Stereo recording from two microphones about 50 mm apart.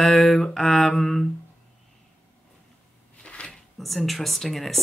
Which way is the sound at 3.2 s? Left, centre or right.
Left.